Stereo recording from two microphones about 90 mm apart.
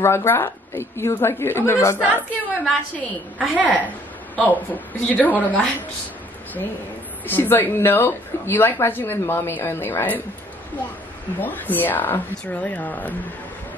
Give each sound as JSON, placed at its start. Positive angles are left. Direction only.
{"t": 0.0, "sound": "speech", "side_deg": 30}
{"t": 3.3, "sound": "a woman's voice", "side_deg": -15}
{"t": 4.4, "sound": "a woman's voice", "side_deg": 20}
{"t": 7.2, "sound": "speech", "side_deg": 25}
{"t": 11.3, "sound": "speech", "side_deg": 20}